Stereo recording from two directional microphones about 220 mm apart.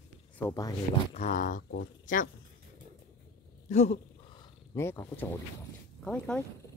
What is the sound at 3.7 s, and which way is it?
Wild animals, 30° left (ahead or behind).